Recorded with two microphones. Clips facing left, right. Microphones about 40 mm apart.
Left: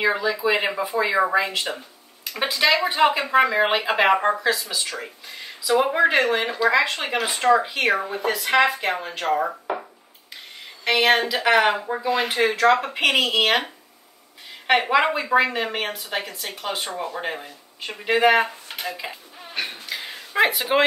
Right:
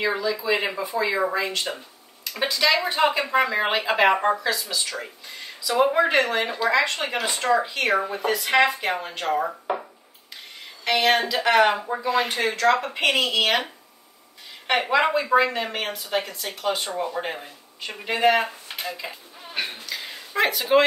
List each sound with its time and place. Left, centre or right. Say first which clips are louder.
0.0 s speech: left 3 dB; left
1.4 s speech: left 1 dB; centre
2.3 s speech: left 1 dB; centre
10.8 s speech: left 2 dB; centre
14.8 s speech: right 3 dB; centre
18.0 s speech: left 3 dB; centre
19.6 s speech: even; centre
19.9 s a sound: left 2 dB; centre